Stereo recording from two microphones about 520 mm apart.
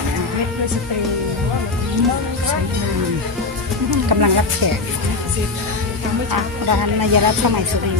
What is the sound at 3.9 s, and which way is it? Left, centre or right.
Speech, right.